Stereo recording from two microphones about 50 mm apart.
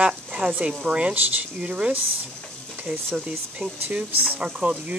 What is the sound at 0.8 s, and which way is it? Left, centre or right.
Speech, right.